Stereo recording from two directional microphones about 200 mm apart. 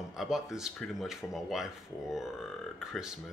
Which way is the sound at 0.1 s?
Centre (ahead or behind).